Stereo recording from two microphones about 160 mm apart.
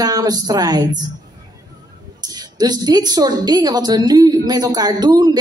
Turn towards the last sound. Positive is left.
turn(degrees=-25)  # may be behind; listen again after turning